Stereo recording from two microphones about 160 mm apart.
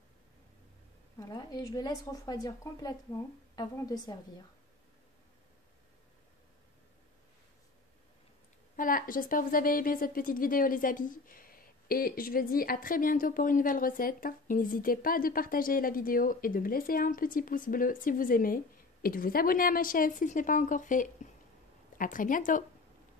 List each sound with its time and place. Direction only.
1.2 s a woman's voice: 25° left (ahead or behind)
8.7 s a woman's voice: 60° left (ahead or behind)